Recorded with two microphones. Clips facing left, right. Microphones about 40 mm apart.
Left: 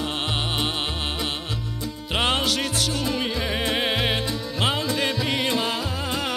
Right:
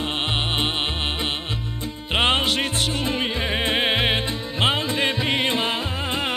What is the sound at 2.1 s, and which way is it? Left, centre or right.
Music, right.